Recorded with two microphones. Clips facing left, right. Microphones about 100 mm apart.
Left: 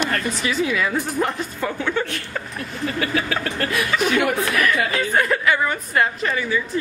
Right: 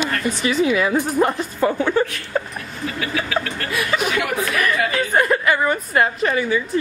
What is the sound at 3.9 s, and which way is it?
Speech, 5° right (ahead or behind).